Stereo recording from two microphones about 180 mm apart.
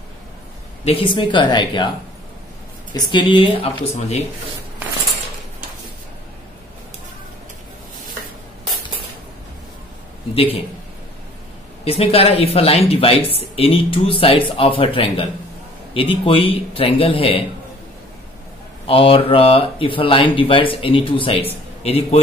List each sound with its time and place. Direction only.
0.8 s speech: 30° left (ahead or behind)
2.9 s speech: 25° left (ahead or behind)
10.3 s speech: 30° left (ahead or behind)
11.8 s speech: 35° left (ahead or behind)
18.9 s speech: 30° left (ahead or behind)